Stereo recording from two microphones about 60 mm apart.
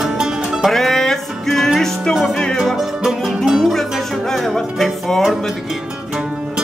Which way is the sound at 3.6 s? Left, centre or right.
Centre.